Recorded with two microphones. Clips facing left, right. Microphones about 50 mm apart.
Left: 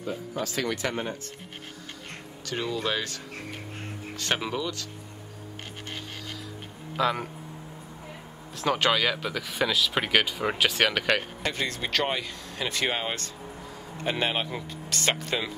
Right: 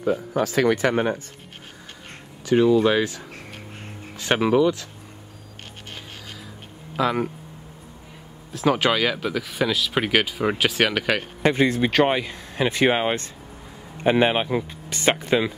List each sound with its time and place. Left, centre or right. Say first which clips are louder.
0.4 s speech: right 8 dB; right
2.4 s speech: right 13 dB; centre
4.2 s speech: right 11 dB; centre
7.0 s speech: right 4 dB; centre
8.5 s speech: right 4 dB; centre
11.4 s speech: right 11 dB; right